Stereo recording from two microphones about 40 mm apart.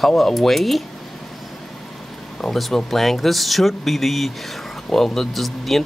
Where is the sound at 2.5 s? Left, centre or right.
Centre.